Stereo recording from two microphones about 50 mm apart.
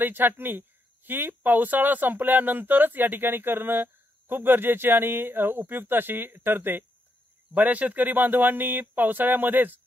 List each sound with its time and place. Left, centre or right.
0.0 s speech: right
7.5 s speech: right